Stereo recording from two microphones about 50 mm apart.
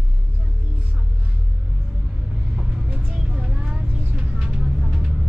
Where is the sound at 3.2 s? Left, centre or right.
Centre.